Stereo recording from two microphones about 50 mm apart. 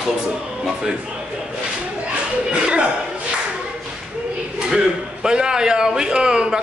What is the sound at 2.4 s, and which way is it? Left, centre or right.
Speech, centre.